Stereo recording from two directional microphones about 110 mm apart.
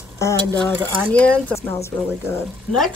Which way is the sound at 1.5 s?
25° left (ahead or behind).